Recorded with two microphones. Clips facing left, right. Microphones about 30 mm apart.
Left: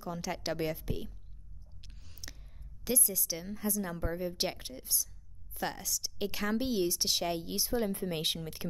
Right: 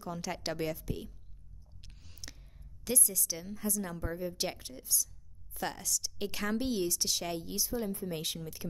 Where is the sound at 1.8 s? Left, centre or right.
Centre.